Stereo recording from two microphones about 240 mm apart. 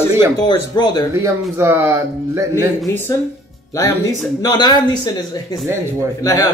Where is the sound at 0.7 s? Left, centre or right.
Centre.